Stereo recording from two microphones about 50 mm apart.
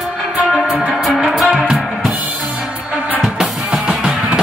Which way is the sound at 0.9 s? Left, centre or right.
Centre.